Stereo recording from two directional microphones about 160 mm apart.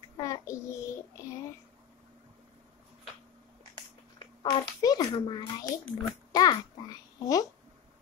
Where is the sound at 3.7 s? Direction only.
30° left (ahead or behind).